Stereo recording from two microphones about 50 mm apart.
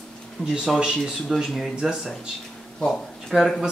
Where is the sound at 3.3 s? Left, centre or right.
Centre.